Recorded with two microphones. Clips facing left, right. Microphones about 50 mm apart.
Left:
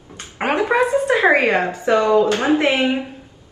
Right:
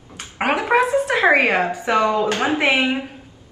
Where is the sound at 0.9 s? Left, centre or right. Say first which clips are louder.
Left 1 dB; right.